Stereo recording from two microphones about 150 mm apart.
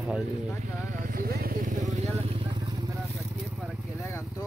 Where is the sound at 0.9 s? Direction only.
70° right (ahead or behind); by 2.5 s 40° right (ahead or behind).